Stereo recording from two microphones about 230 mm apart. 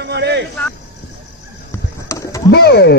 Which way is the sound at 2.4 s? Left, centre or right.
Left.